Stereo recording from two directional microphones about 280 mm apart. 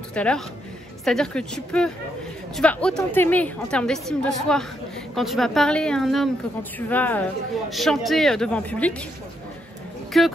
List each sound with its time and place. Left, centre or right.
0.1 s a woman's voice: centre
10.1 s a woman's voice: centre